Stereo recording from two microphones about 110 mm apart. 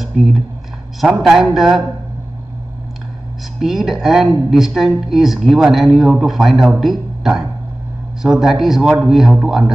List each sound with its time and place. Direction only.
0.0 s a sound: centre (ahead or behind)
1.0 s speech: 5° right (ahead or behind)
3.6 s speech: centre (ahead or behind)